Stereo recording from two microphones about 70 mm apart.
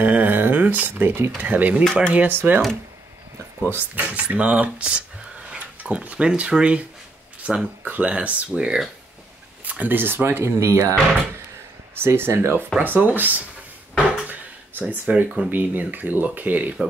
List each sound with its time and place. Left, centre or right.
0.0 s speech: right
2.4 s speech: right
3.7 s speech: right; by 8.9 s centre
9.7 s speech: right
12.0 s speech: right
13.9 s plucked string instrument: centre
15.5 s speech: right